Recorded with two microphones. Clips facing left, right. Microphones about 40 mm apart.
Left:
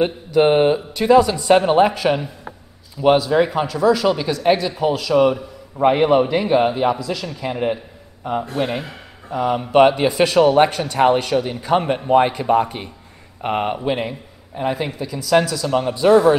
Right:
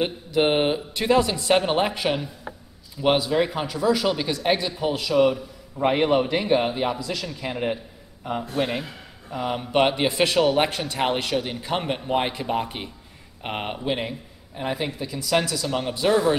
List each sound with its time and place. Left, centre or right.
0.0 s a man's voice: centre
1.4 s a man's voice: centre
3.0 s a man's voice: centre